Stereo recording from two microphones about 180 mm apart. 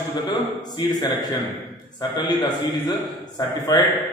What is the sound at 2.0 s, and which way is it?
A man's voice, 25° left (ahead or behind).